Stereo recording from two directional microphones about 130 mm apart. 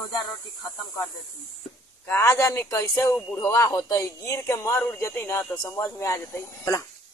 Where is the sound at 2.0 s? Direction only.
20° left (ahead or behind).